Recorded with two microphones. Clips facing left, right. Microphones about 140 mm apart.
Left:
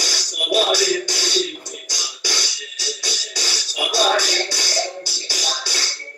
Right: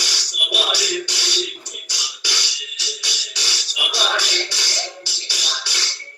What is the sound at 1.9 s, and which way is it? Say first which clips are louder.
Music: left 3 dB; 45° left (ahead or behind).